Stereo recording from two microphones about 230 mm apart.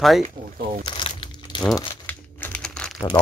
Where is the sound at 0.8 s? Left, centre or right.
Left.